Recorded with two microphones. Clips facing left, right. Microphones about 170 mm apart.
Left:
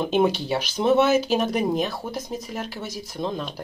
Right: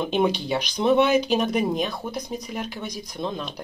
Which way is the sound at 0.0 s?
5° left (ahead or behind).